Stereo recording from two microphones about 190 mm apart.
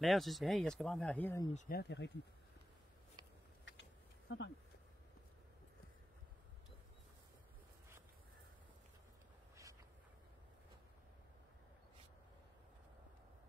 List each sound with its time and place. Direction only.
0.0 s speech: centre (ahead or behind)
1.7 s speech: 55° left (ahead or behind)
4.3 s speech: 80° left